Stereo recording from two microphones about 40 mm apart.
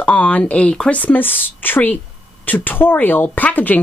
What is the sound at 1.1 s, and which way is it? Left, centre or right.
A woman's voice, left.